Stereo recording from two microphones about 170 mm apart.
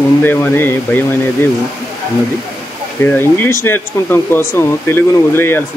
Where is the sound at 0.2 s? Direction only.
10° left (ahead or behind).